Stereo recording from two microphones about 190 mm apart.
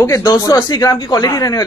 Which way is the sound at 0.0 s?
15° left (ahead or behind).